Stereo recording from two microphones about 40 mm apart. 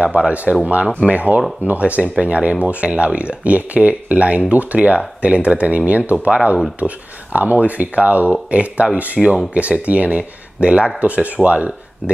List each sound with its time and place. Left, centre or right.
0.0 s speech: right